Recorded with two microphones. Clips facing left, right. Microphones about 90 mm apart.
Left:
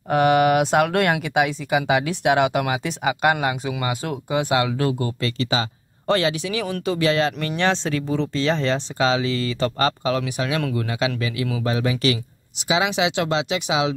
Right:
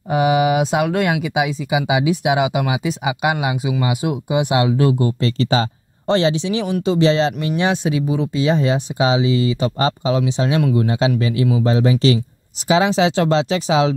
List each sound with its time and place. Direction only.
0.1 s speech: 5° right (ahead or behind); by 5.3 s 25° right (ahead or behind)
5.4 s speech: 35° right (ahead or behind)
6.0 s speech: 25° right (ahead or behind)